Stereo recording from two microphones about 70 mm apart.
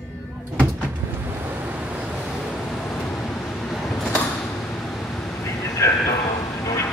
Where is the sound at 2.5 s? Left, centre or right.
Centre.